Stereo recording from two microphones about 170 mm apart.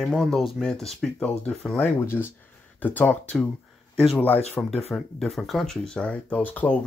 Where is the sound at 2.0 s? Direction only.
15° left (ahead or behind).